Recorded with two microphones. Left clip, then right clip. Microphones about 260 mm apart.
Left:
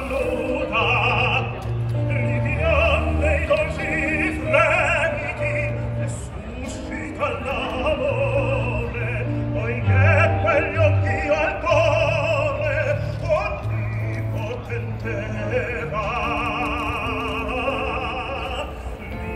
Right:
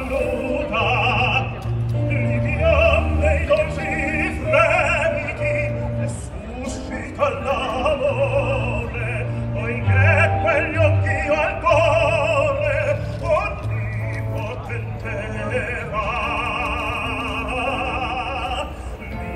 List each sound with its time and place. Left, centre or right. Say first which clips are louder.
0.1 s music: right 1 dB; centre
3.6 s opera: even; centre
7.2 s opera: right 4 dB; centre
9.6 s opera: right 2 dB; right
15.0 s opera: right 1 dB; right
18.0 s opera: right 3 dB; right